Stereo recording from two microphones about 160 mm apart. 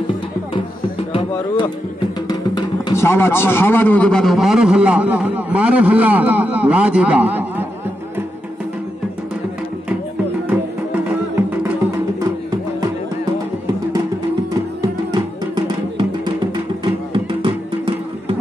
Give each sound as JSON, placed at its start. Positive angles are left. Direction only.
{"t": 2.2, "sound": "music", "side_deg": 25}
{"t": 3.0, "sound": "a man's voice", "side_deg": 15}
{"t": 11.1, "sound": "music", "side_deg": -10}
{"t": 12.2, "sound": "music", "side_deg": -20}
{"t": 14.5, "sound": "music", "side_deg": -25}